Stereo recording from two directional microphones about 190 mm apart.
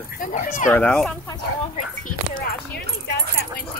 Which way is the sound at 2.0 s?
50° left (ahead or behind).